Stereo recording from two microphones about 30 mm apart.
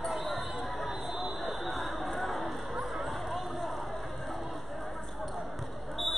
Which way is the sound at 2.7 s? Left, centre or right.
Centre.